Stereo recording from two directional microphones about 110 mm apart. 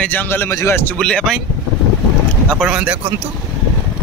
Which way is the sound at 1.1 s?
10° left (ahead or behind).